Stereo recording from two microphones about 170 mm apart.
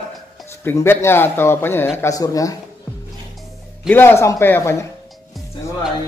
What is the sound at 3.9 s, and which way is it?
A man's voice, 15° left (ahead or behind).